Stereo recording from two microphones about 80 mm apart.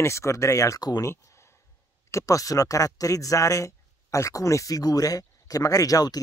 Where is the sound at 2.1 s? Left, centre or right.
Left.